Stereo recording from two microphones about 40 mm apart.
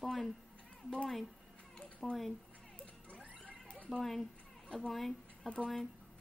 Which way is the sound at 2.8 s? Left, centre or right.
Left.